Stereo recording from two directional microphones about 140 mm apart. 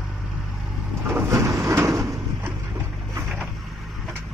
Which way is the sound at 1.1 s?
20° right (ahead or behind).